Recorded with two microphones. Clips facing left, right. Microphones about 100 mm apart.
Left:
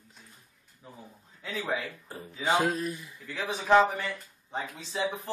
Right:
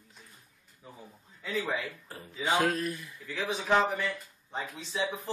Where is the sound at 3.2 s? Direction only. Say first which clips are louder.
Left 1 dB; centre (ahead or behind).